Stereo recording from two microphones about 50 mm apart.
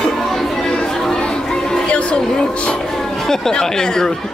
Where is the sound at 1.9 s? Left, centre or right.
Left.